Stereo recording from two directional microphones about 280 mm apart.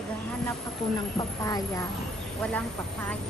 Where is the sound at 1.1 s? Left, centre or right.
Centre.